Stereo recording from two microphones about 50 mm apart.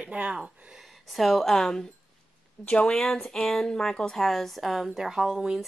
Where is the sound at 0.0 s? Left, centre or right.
Right.